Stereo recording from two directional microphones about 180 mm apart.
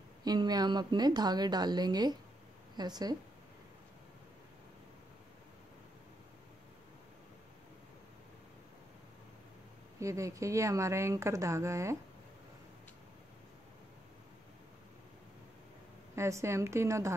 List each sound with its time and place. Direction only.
0.2 s a woman's voice: 20° right (ahead or behind)
9.9 s speech: 15° right (ahead or behind)
16.2 s speech: 15° right (ahead or behind)